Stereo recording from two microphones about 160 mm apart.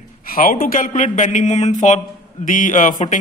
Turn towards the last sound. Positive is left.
turn(degrees=55)  # may be behind; listen again after turning